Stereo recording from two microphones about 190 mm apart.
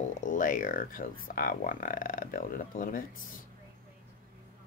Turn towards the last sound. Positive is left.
turn(degrees=45)  # may be behind; listen again after turning